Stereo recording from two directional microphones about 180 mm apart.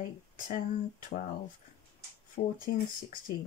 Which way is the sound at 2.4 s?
45° left (ahead or behind).